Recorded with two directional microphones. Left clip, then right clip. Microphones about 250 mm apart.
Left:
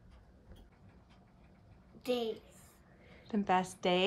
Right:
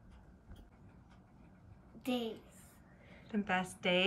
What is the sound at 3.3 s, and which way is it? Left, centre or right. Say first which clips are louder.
Speech: left 5 dB; centre.